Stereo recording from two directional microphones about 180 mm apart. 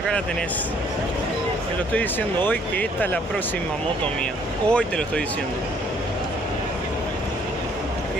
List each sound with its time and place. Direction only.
2.0 s speech: 10° left (ahead or behind)
4.6 s speech: 5° left (ahead or behind)